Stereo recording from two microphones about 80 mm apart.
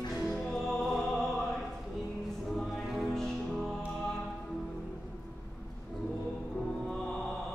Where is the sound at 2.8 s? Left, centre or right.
Centre.